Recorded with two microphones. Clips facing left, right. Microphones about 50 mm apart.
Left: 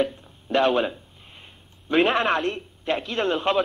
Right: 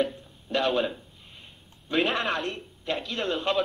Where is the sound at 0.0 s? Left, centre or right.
Left.